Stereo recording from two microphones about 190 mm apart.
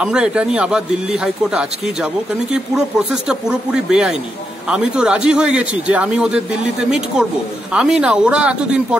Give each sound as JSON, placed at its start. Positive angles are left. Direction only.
{"t": 0.0, "sound": "a man's voice", "side_deg": -5}
{"t": 3.3, "sound": "a man's voice", "side_deg": -5}